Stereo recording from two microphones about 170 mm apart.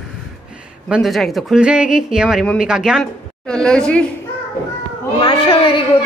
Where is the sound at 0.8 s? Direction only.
5° right (ahead or behind).